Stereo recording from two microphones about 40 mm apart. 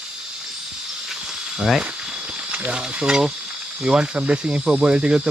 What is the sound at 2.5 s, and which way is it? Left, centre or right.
Speech, right.